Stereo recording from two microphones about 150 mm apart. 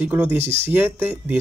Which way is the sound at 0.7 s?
15° right (ahead or behind).